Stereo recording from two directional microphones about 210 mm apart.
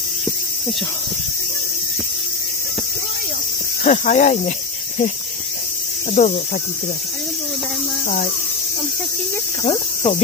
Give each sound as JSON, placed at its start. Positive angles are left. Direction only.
{"t": 3.8, "sound": "cricket", "side_deg": 35}
{"t": 6.1, "sound": "speech", "side_deg": 35}
{"t": 9.7, "sound": "cricket", "side_deg": 30}